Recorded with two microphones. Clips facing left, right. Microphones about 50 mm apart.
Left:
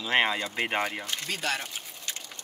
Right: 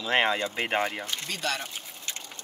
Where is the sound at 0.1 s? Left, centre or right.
Centre.